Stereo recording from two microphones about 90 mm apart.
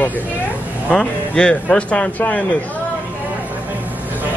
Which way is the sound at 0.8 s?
10° left (ahead or behind).